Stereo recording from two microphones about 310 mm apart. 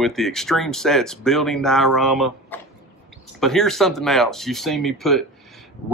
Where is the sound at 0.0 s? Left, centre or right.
Centre.